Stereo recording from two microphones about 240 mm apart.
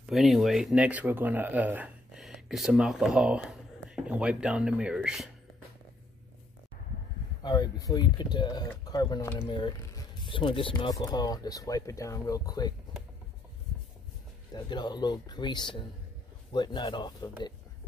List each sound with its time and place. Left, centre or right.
0.0 s speech: centre
7.4 s speech: centre
14.5 s a man's voice: centre